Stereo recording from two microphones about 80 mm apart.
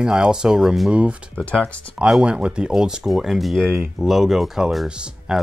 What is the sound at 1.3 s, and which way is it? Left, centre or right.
Speech, centre.